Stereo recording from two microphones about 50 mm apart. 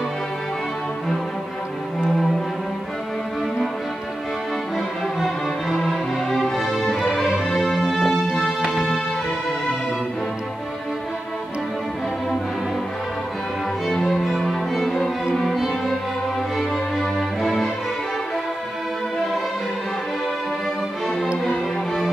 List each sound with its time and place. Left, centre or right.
4.7 s music: centre
8.6 s music: centre
13.8 s music: centre
15.4 s violin: centre
17.0 s music: centre
21.5 s music: centre